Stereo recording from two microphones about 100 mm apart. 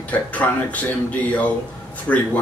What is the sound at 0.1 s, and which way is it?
Speech, 15° left (ahead or behind).